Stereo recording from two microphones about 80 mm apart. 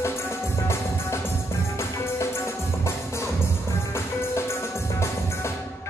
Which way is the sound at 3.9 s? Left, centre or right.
Left.